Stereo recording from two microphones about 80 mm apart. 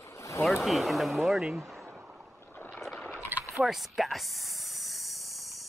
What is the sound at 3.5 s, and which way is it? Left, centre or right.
Snake, centre.